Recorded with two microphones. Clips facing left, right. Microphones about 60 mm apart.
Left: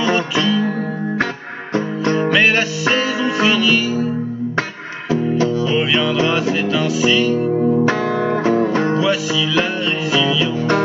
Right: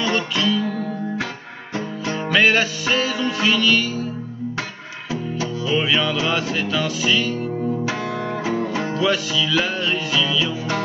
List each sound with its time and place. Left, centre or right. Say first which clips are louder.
0.0 s music: left 4 dB; centre
2.1 s music: left 1 dB; centre
5.1 s music: left 9 dB; centre
8.7 s music: left 4 dB; centre